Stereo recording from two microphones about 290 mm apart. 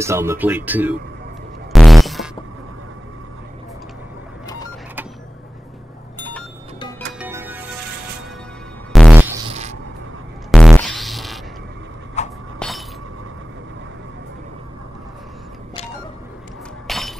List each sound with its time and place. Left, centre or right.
0.0 s speech: centre
1.7 s music: centre
6.1 s vehicle: centre
7.2 s music: centre
8.9 s music: centre
10.5 s music: centre
12.2 s a sound: left
12.5 s a sound: centre
16.8 s breaking: centre